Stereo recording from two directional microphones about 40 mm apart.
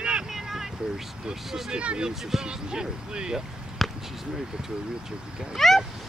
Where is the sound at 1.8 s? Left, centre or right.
Right.